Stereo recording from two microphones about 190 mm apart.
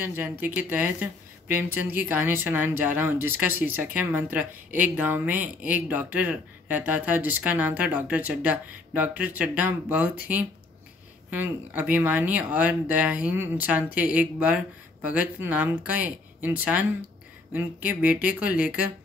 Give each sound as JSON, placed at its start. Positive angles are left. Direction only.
{"t": 0.0, "sound": "speech", "side_deg": -10}